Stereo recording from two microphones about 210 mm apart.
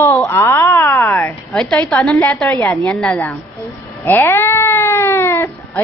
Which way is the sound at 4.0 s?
10° left (ahead or behind).